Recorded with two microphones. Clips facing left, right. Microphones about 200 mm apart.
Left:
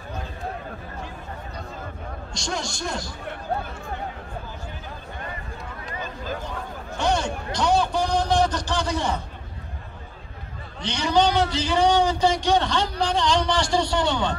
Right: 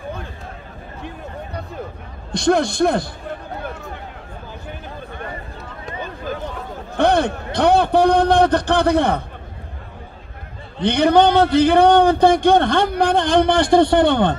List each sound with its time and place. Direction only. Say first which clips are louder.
2.3 s a man's voice: right 15 dB; 60° right (ahead or behind)
7.0 s a sound: right 8 dB; 60° right (ahead or behind)
10.8 s a man's voice: right 8 dB; 55° right (ahead or behind)